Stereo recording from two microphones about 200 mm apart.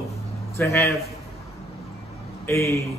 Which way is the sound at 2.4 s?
15° left (ahead or behind).